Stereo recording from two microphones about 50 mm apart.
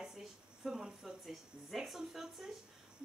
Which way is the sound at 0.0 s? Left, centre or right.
Centre.